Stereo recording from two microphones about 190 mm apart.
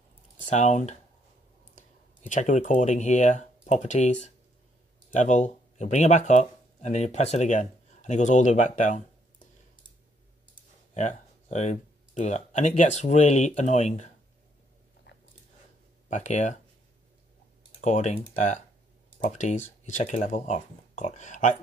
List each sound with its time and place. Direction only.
0.5 s speech: 40° left (ahead or behind)
11.0 s speech: 40° left (ahead or behind)
15.1 s biting: 65° left (ahead or behind)
16.1 s speech: 40° left (ahead or behind)
17.7 s speech: 40° left (ahead or behind)